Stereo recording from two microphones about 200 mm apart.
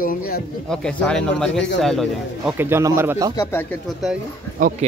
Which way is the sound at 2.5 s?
10° right (ahead or behind).